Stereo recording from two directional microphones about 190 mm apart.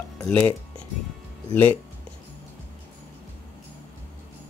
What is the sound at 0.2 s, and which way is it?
Speech, 10° left (ahead or behind).